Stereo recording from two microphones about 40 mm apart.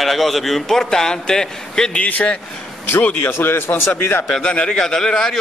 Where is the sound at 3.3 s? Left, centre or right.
Left.